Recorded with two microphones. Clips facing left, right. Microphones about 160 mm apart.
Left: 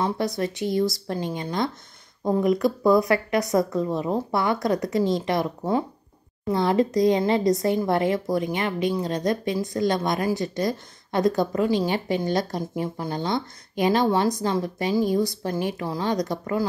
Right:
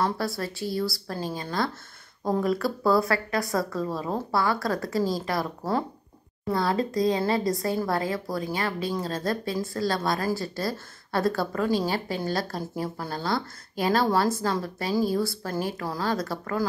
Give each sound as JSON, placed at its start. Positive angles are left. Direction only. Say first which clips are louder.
{"t": 0.0, "sound": "a woman's voice", "louder": "left 3 dB", "side_deg": 20}